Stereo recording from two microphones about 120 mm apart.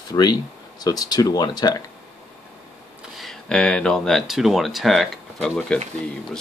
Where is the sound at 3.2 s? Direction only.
5° left (ahead or behind).